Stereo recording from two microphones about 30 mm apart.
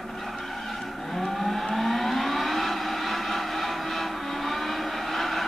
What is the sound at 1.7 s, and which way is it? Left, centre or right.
Civil defense siren, centre.